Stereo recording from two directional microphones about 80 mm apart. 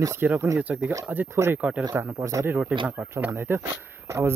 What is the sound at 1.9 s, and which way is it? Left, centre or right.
Speech, right.